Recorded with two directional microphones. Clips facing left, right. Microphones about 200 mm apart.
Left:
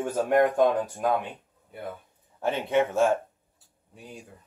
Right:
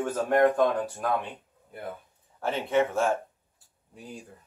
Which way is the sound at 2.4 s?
15° left (ahead or behind).